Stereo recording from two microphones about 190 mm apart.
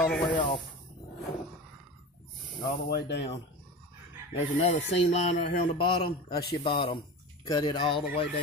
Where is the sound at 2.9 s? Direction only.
60° left (ahead or behind).